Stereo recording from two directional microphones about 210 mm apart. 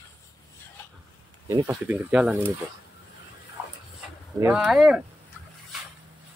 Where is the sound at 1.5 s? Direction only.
15° right (ahead or behind).